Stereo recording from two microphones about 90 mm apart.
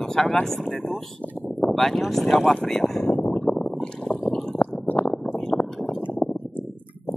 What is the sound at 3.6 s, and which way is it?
Boat, 5° left (ahead or behind).